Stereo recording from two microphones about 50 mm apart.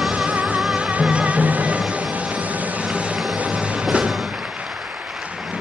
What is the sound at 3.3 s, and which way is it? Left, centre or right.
Music, right.